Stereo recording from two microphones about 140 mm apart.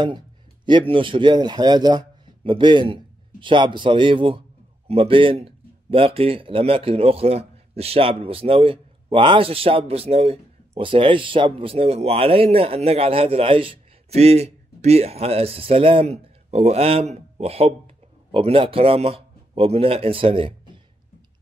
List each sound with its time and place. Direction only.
0.7 s a man's voice: 35° right (ahead or behind)